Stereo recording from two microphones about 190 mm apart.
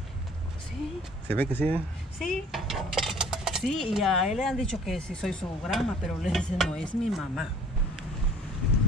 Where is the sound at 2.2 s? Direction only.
Centre (ahead or behind).